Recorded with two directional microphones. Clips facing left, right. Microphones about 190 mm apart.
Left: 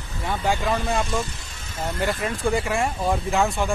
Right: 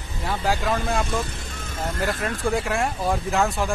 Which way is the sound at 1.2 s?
55° right (ahead or behind).